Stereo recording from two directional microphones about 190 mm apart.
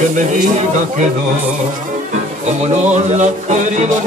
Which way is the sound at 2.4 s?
40° right (ahead or behind).